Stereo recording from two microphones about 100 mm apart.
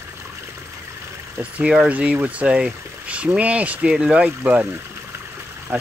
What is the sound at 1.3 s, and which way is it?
Speech, 15° right (ahead or behind).